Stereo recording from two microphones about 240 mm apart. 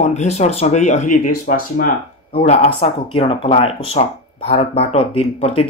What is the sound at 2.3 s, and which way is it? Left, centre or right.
Speech, left.